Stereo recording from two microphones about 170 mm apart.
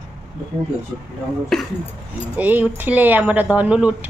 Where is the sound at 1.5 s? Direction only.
5° left (ahead or behind).